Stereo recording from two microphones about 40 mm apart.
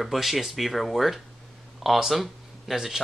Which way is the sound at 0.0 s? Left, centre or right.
Centre.